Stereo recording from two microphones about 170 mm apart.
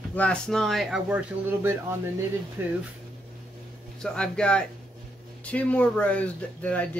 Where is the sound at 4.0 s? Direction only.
5° left (ahead or behind).